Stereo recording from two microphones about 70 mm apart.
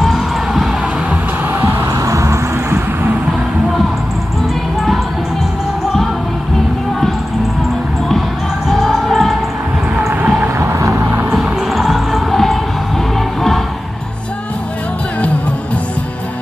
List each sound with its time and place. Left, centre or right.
0.0 s music: centre
1.5 s music: right
2.0 s vehicle: right
8.6 s music: centre
10.6 s vehicle: right
11.3 s music: centre